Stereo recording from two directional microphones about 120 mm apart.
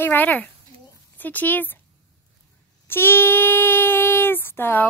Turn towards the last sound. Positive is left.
turn(degrees=20)  # may be behind; listen again after turning